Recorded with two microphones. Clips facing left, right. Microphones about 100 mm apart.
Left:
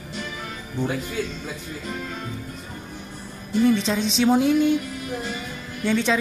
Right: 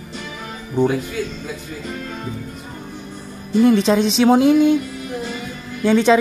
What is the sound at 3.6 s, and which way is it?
A woman's voice, 65° right (ahead or behind).